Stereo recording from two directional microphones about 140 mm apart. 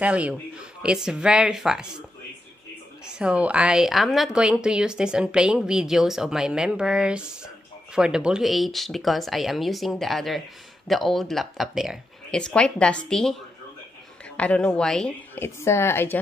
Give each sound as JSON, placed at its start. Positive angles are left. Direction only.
{"t": 0.0, "sound": "a woman's voice", "side_deg": -10}
{"t": 3.1, "sound": "a woman's voice", "side_deg": -5}
{"t": 15.3, "sound": "a woman's voice", "side_deg": 15}